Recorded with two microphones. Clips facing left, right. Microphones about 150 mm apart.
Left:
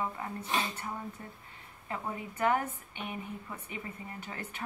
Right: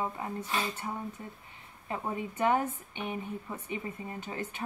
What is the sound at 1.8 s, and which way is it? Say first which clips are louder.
A woman's voice: right 3 dB; 20° right (ahead or behind).